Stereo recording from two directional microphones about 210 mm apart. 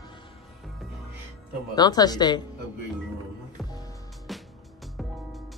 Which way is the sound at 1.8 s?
20° left (ahead or behind).